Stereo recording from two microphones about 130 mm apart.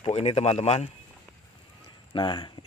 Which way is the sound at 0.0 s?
50° left (ahead or behind).